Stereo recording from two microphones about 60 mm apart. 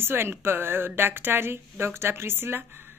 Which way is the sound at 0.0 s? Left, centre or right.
Right.